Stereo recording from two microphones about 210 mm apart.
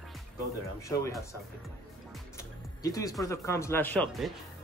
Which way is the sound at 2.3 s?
15° left (ahead or behind).